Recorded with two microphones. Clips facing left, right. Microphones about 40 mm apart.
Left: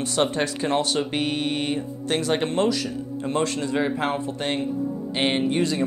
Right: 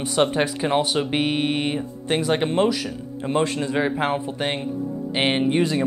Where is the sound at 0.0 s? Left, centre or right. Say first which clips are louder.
Right 3 dB; centre.